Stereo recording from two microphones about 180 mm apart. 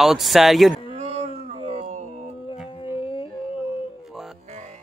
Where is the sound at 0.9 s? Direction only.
40° right (ahead or behind).